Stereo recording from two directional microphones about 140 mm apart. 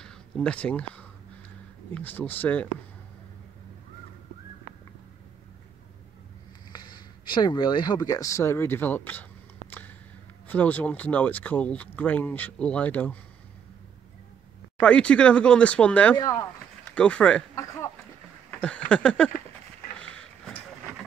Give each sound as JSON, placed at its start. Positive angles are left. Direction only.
{"t": 0.0, "sound": "speech", "side_deg": 10}
{"t": 6.7, "sound": "a sound", "side_deg": 30}
{"t": 10.5, "sound": "speech", "side_deg": 10}
{"t": 14.8, "sound": "speech", "side_deg": 10}
{"t": 16.2, "sound": "speech", "side_deg": 25}
{"t": 16.9, "sound": "speech", "side_deg": 10}
{"t": 18.5, "sound": "a sound", "side_deg": 10}
{"t": 20.0, "sound": "vehicle", "side_deg": 5}